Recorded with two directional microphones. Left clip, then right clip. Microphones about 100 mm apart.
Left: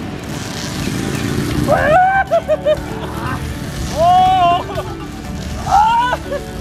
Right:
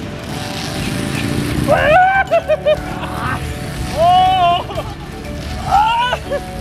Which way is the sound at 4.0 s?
10° left (ahead or behind).